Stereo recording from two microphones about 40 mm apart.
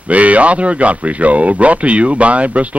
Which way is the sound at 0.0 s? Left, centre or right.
Right.